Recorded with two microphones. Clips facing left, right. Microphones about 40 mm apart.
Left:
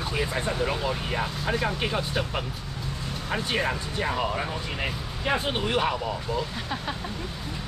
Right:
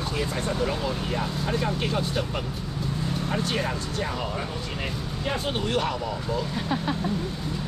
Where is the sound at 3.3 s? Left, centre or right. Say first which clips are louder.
Left 3 dB; centre.